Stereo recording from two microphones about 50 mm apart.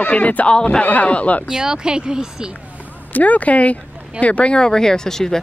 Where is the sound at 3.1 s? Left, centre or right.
Left.